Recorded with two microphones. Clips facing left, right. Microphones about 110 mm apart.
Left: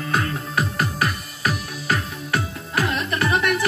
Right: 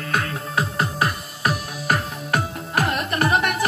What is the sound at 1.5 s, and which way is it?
Music, 45° right (ahead or behind).